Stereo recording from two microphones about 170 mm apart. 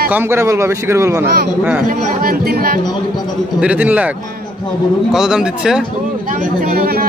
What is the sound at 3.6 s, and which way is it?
Speech, 10° right (ahead or behind).